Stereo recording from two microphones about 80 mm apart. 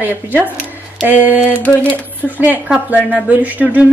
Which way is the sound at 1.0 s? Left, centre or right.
Right.